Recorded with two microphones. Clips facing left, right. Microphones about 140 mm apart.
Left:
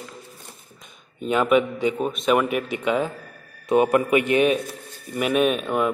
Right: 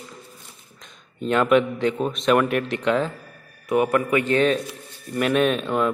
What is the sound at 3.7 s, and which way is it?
A man's voice, 20° left (ahead or behind).